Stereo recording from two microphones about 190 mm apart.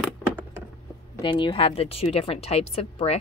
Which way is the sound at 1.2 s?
25° left (ahead or behind).